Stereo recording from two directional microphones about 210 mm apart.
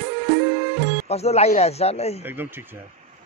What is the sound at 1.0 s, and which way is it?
Speech, 30° left (ahead or behind).